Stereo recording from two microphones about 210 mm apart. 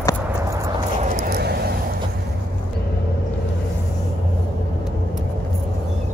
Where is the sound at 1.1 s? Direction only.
50° right (ahead or behind).